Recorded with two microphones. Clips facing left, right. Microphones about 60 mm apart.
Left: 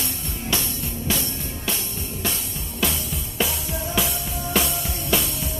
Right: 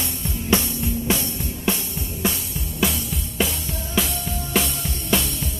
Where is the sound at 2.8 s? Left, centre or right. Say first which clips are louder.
Right 2 dB; centre.